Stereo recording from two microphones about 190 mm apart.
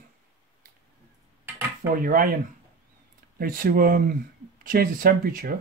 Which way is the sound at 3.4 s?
50° right (ahead or behind).